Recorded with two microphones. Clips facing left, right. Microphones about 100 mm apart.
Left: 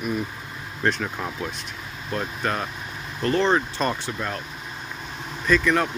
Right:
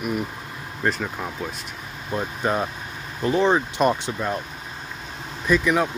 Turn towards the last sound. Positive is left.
turn(degrees=-10)  # may be behind; listen again after turning